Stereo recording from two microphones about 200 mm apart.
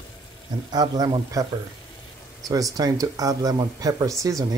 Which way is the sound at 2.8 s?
15° right (ahead or behind).